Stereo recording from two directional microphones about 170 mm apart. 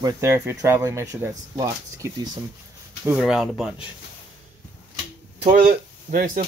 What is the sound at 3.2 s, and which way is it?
Speech, centre (ahead or behind).